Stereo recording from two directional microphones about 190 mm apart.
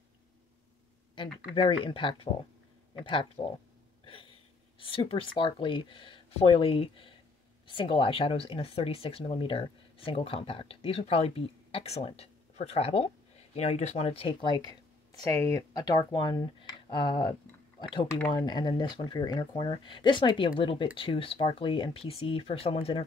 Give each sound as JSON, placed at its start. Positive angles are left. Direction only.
{"t": 1.1, "sound": "speech", "side_deg": 25}
{"t": 4.0, "sound": "a sound", "side_deg": 30}
{"t": 4.7, "sound": "speech", "side_deg": 30}